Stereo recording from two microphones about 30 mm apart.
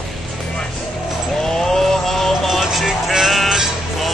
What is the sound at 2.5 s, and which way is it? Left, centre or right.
Music, centre.